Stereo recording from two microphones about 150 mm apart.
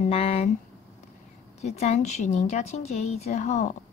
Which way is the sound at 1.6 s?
45° left (ahead or behind).